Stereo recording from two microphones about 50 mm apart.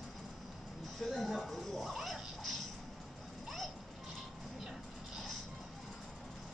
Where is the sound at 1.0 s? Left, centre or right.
Centre.